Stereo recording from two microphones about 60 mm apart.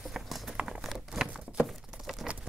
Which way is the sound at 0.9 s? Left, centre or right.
Centre.